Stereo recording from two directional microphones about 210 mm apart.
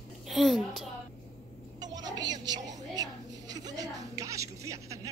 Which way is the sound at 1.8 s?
20° right (ahead or behind).